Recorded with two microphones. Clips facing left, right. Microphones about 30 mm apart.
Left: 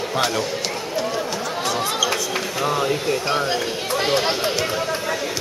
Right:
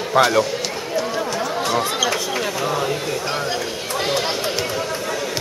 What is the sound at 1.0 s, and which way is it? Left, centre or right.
Chatter, centre.